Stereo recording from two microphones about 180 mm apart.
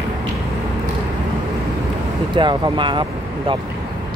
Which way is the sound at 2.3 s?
25° right (ahead or behind).